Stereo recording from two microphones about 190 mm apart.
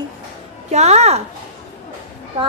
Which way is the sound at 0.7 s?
35° right (ahead or behind).